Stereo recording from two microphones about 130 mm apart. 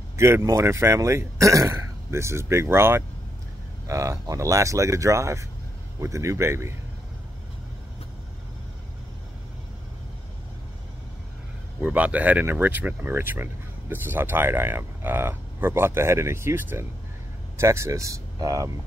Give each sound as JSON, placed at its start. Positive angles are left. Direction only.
{"t": 0.1, "sound": "speech", "side_deg": -20}
{"t": 11.8, "sound": "speech", "side_deg": -10}